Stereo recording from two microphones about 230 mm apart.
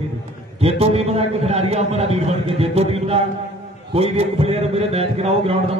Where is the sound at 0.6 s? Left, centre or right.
Right.